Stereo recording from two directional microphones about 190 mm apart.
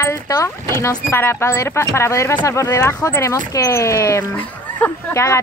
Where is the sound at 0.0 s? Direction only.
15° left (ahead or behind).